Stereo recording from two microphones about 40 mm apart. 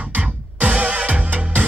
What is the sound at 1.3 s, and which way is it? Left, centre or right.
Music, right.